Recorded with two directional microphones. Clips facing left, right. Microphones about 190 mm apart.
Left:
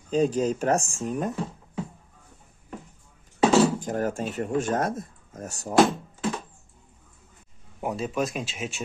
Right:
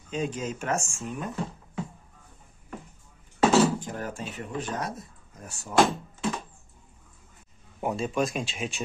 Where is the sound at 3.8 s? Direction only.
45° left (ahead or behind).